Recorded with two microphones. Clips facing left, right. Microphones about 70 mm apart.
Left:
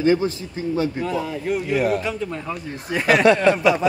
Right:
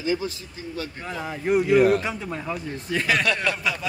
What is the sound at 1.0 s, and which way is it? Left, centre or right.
Speech, right.